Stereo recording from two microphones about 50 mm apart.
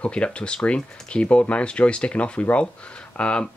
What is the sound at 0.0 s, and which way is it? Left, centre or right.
Speech, left.